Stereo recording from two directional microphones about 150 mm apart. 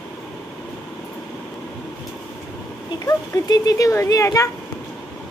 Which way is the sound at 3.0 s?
25° left (ahead or behind).